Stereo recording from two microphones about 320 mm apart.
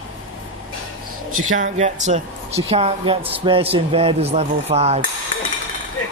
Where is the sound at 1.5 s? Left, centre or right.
Right.